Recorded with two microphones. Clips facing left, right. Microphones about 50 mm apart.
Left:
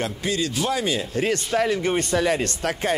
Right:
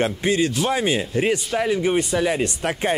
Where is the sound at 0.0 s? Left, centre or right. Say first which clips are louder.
Right 5 dB; right.